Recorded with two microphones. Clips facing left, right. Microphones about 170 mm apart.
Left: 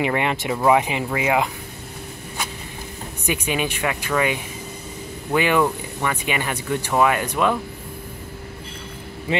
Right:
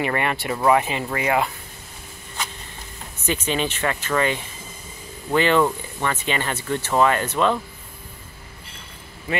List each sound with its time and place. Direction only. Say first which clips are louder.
0.0 s speech: left 2 dB; 15° left (ahead or behind)
3.3 s speech: even; 10° left (ahead or behind)